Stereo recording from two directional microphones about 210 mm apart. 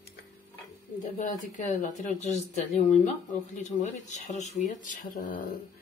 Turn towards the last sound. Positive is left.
turn(degrees=40)  # may be behind; listen again after turning